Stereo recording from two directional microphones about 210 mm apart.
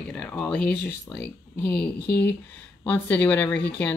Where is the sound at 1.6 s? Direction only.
50° left (ahead or behind).